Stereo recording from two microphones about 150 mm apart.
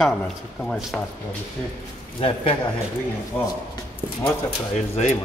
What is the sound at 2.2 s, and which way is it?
Speech, 40° left (ahead or behind).